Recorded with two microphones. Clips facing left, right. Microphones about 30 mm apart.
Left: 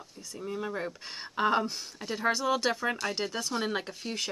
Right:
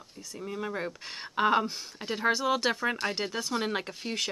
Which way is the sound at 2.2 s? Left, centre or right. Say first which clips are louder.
Right 1 dB; centre.